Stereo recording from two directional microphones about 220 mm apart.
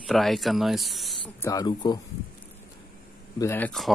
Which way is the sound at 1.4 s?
15° left (ahead or behind).